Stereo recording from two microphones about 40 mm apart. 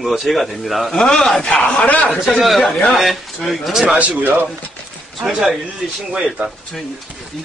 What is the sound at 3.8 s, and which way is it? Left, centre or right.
Speech, right.